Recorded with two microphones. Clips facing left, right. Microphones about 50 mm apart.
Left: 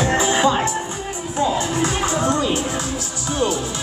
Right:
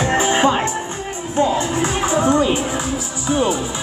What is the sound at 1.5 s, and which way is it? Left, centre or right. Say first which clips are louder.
Music: right 1 dB; right.